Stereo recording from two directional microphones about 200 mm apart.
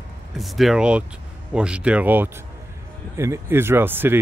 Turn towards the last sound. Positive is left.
turn(degrees=-10)  # may be behind; listen again after turning